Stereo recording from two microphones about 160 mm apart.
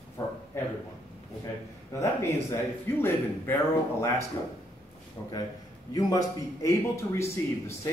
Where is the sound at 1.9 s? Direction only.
15° left (ahead or behind).